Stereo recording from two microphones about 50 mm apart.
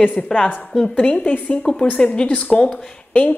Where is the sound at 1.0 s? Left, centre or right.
Left.